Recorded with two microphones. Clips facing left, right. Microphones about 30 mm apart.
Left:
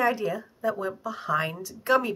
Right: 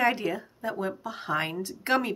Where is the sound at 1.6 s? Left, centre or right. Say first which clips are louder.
Left 2 dB; right.